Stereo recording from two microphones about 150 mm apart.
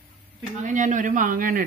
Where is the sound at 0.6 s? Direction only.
60° right (ahead or behind).